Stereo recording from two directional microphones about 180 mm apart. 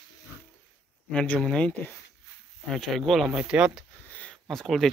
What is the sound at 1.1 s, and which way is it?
Speech, 5° left (ahead or behind).